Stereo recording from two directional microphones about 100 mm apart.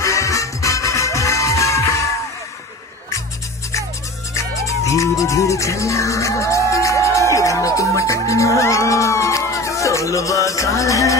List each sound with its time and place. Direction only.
0.0 s music: 30° left (ahead or behind)
4.3 s music: 30° left (ahead or behind)
7.3 s speech: 35° left (ahead or behind)